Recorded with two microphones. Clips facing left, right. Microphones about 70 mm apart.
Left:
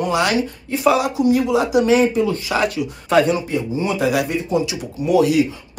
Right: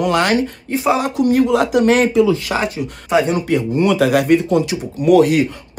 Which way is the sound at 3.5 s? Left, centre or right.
Right.